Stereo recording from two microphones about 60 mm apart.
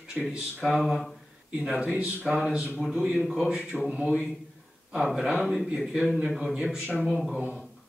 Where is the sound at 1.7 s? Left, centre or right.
Centre.